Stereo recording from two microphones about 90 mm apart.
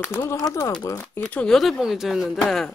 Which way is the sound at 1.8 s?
5° right (ahead or behind).